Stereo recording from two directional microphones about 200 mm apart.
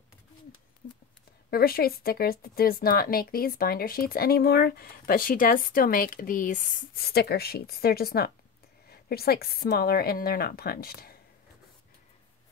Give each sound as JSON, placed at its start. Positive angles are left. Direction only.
{"t": 1.5, "sound": "speech", "side_deg": 50}